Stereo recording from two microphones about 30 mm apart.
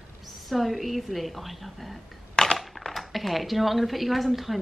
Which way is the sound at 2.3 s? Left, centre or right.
Left.